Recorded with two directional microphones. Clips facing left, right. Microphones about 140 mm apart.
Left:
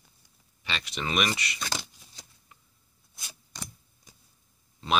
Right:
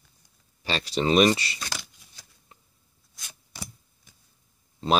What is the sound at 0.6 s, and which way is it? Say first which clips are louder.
Speech: right 8 dB; 35° right (ahead or behind).